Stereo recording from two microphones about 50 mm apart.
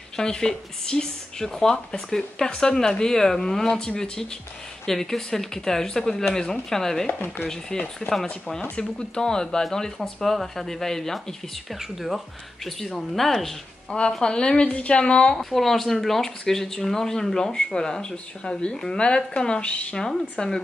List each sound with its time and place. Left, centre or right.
0.1 s a woman's voice: centre
13.8 s speech: centre
15.3 s speech: centre; by 20.0 s left
20.0 s speech: centre